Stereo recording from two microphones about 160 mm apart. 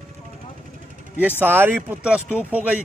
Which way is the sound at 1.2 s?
10° right (ahead or behind).